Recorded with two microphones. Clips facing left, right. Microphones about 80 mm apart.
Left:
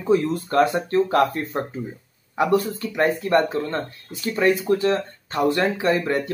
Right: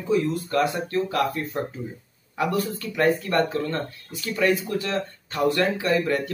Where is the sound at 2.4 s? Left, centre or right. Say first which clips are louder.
Left 5 dB; left.